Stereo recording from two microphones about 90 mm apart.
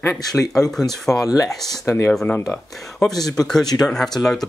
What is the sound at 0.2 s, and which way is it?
Speech, 45° left (ahead or behind).